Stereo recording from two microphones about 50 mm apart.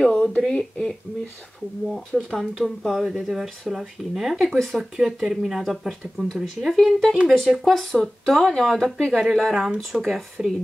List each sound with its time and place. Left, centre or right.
0.0 s a sound: centre
0.5 s speech: centre
2.1 s speech: centre
9.1 s speech: centre